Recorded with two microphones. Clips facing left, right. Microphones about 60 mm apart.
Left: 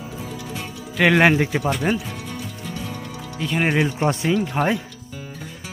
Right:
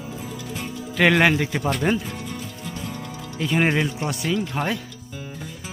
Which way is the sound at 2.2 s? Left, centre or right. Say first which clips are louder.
Left 1 dB; left.